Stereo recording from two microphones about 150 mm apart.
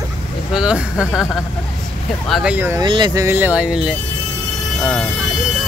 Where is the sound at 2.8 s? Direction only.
30° right (ahead or behind); by 3.9 s 5° right (ahead or behind).